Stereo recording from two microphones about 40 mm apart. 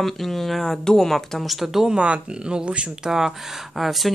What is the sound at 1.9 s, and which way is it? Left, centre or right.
Speech, right.